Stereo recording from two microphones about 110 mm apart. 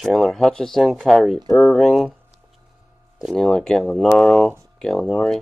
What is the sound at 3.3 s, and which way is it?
Speech, 5° left (ahead or behind).